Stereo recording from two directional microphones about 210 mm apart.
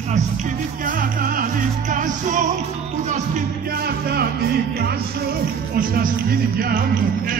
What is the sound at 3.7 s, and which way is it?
Music, 45° right (ahead or behind).